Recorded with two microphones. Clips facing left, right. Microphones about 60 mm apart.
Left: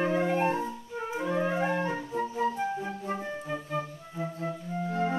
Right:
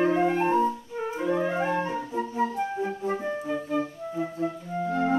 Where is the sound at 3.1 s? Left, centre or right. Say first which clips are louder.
Right 5 dB; centre.